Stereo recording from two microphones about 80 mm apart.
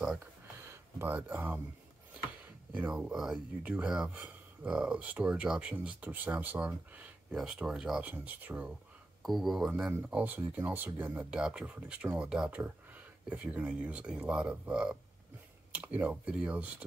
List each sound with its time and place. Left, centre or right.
0.2 s a sound: right
1.1 s speech: right
3.6 s speech: centre
8.0 s speech: right
9.2 s speech: centre; by 11.1 s right
11.1 s speech: centre